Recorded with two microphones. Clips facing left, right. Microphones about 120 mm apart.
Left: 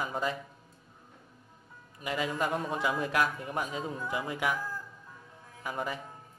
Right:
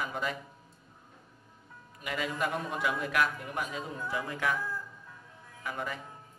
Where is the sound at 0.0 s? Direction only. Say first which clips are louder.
Left 2 dB; 25° left (ahead or behind).